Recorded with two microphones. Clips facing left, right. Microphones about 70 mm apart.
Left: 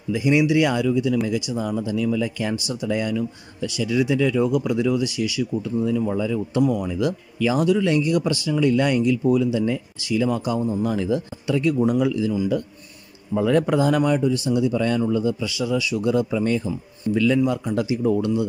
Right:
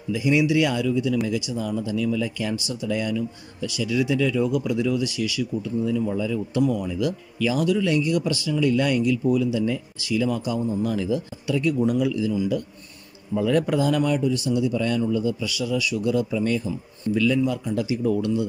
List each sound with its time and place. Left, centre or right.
0.1 s speech: left
5.9 s a man's voice: left